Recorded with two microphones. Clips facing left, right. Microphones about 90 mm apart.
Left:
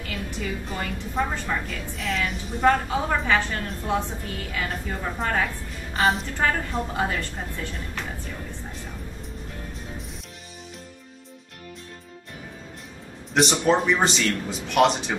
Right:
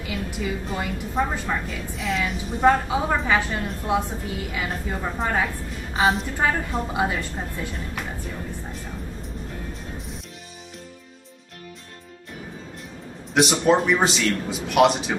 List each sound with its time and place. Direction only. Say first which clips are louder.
0.0 s a woman's voice: right 3 dB; 10° right (ahead or behind)
9.9 s music: right 2 dB; centre (ahead or behind)
13.3 s a man's voice: right 2 dB; 5° right (ahead or behind)